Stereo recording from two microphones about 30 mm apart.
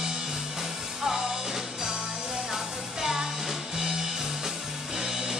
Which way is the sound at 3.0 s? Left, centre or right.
Right.